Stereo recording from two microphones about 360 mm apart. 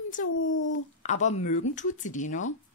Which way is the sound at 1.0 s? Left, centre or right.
Centre.